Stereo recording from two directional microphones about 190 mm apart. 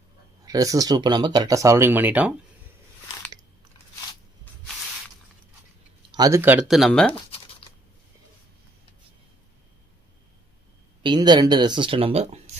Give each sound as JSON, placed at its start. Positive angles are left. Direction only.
{"t": 0.5, "sound": "speech", "side_deg": -20}
{"t": 6.1, "sound": "speech", "side_deg": -15}
{"t": 7.2, "sound": "a sound", "side_deg": 30}
{"t": 11.0, "sound": "speech", "side_deg": -25}